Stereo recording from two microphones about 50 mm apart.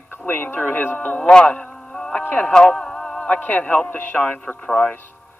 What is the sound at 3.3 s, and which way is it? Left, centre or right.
Speech, left.